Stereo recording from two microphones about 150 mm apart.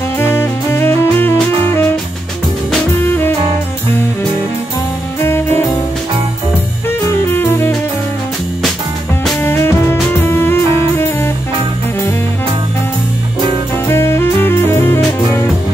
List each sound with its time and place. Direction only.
0.2 s music: 15° left (ahead or behind)
3.0 s music: 15° left (ahead or behind)
5.2 s music: 15° left (ahead or behind)
6.9 s music: 15° left (ahead or behind)
9.4 s music: 15° left (ahead or behind)
13.8 s music: 15° left (ahead or behind)